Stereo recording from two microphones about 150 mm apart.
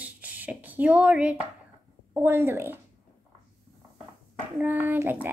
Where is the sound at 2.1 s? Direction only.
15° right (ahead or behind).